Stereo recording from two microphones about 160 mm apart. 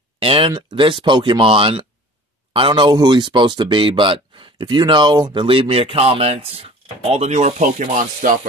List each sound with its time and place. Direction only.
0.2 s speech: 35° right (ahead or behind); by 8.4 s 55° right (ahead or behind)